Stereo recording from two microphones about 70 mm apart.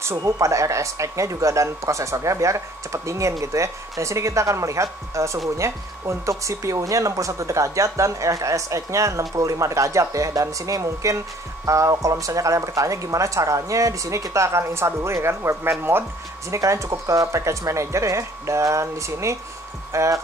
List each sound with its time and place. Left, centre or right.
0.2 s speech: right
16.4 s speech: right